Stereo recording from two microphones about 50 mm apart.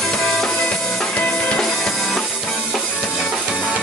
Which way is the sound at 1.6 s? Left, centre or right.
Centre.